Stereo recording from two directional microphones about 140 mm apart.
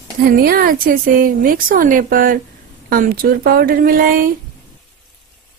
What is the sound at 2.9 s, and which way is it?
A woman's voice, 90° right.